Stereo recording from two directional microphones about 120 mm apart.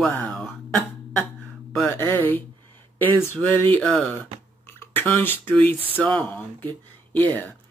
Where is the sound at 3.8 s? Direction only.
5° left (ahead or behind).